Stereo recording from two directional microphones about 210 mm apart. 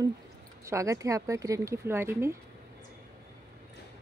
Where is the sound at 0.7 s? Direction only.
15° right (ahead or behind).